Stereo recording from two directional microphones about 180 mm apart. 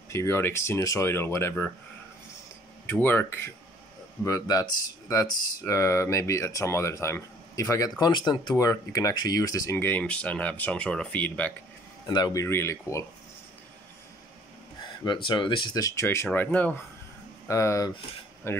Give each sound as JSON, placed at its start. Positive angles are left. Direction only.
{"t": 0.1, "sound": "speech", "side_deg": 15}
{"t": 2.9, "sound": "speech", "side_deg": 10}
{"t": 12.1, "sound": "speech", "side_deg": 20}
{"t": 15.2, "sound": "speech", "side_deg": 25}